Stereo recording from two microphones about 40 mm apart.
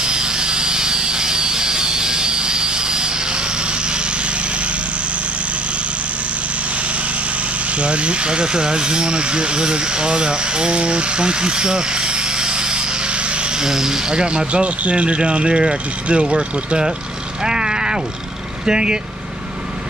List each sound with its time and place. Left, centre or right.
0.0 s a sound: right
7.7 s speech: right
13.6 s speech: centre
17.4 s vehicle: centre
18.7 s speech: centre